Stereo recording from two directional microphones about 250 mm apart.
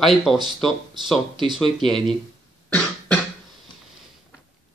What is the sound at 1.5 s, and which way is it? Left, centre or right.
Speech, centre.